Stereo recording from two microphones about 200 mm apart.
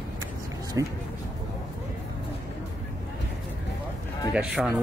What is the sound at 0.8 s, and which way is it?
Speech, 15° right (ahead or behind).